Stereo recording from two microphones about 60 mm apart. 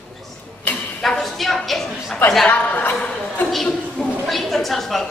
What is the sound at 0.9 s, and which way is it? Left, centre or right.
A man's voice, centre.